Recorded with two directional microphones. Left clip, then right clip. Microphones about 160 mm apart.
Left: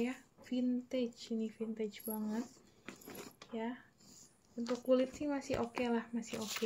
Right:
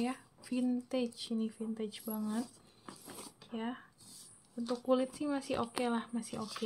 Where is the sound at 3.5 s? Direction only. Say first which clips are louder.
Right 1 dB; 35° right (ahead or behind).